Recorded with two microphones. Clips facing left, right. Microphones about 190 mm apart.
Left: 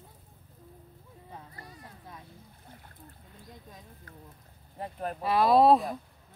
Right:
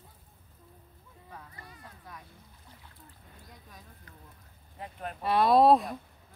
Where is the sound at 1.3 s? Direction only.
30° left (ahead or behind).